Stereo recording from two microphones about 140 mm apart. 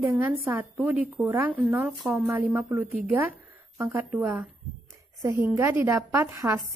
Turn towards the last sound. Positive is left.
turn(degrees=-15)  # may be behind; listen again after turning